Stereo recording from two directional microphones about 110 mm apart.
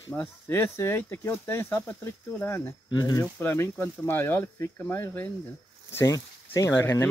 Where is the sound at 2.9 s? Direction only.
40° left (ahead or behind).